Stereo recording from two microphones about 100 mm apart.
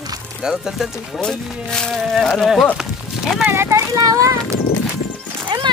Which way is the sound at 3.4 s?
25° right (ahead or behind).